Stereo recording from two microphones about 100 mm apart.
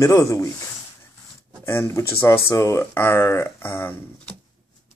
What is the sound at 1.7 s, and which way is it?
Speech, 25° left (ahead or behind).